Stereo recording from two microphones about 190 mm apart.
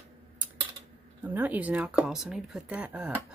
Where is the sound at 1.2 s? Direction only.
10° right (ahead or behind).